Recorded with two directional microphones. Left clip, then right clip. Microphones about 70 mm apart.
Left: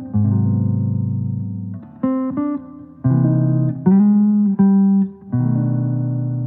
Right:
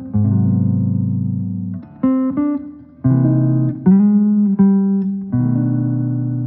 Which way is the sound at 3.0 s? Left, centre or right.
Right.